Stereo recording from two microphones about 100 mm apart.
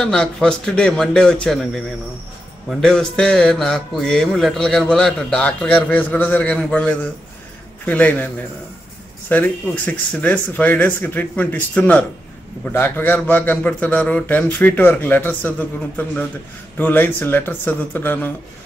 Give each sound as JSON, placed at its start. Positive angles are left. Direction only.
{"t": 0.0, "sound": "a man's voice", "side_deg": 5}
{"t": 9.3, "sound": "a man's voice", "side_deg": 15}
{"t": 16.7, "sound": "speech", "side_deg": 20}